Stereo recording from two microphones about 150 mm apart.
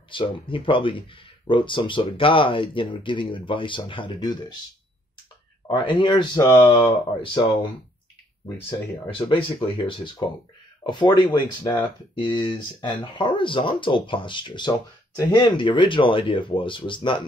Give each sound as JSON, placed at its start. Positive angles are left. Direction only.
{"t": 0.1, "sound": "speech", "side_deg": 35}
{"t": 5.7, "sound": "speech", "side_deg": 30}
{"t": 6.8, "sound": "speech", "side_deg": 35}
{"t": 9.3, "sound": "speech", "side_deg": 35}
{"t": 12.8, "sound": "speech", "side_deg": 30}